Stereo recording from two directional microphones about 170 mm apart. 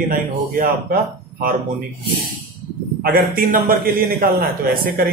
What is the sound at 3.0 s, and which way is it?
A man's voice, 60° right (ahead or behind).